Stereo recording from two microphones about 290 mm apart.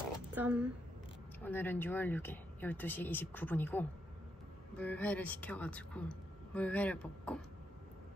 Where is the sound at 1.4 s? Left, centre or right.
Centre.